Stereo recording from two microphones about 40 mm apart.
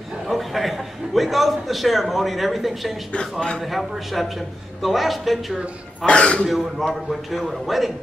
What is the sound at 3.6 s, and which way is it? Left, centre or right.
A man's voice, centre.